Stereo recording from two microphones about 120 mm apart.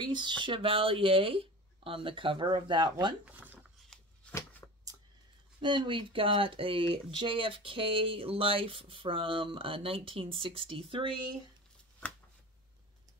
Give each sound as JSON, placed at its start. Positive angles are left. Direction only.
{"t": 0.0, "sound": "speech", "side_deg": -40}
{"t": 3.3, "sound": "a sound", "side_deg": -15}
{"t": 4.3, "sound": "shuffling cards", "side_deg": 25}
{"t": 5.6, "sound": "speech", "side_deg": -40}